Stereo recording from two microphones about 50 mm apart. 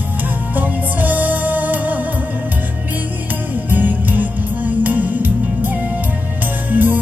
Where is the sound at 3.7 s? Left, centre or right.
Right.